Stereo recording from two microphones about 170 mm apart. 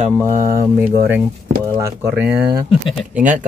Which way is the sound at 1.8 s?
15° right (ahead or behind).